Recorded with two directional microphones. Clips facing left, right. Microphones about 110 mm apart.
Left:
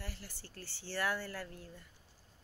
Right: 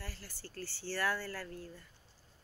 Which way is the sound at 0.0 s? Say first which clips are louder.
Even; 20° left (ahead or behind).